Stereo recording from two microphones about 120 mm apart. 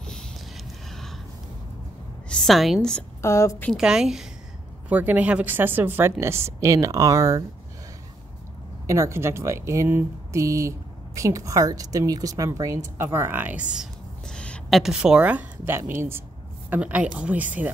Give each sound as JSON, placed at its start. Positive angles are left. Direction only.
{"t": 0.8, "sound": "gasp", "side_deg": 0}
{"t": 2.2, "sound": "a woman's voice", "side_deg": 5}
{"t": 3.2, "sound": "a woman's voice", "side_deg": 25}
{"t": 3.7, "sound": "a woman's voice", "side_deg": -5}
{"t": 8.8, "sound": "a woman's voice", "side_deg": -25}
{"t": 14.3, "sound": "a sound", "side_deg": 5}
{"t": 14.8, "sound": "a woman's voice", "side_deg": -5}